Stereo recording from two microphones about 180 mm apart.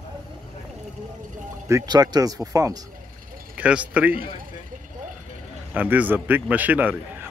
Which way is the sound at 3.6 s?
5° right (ahead or behind).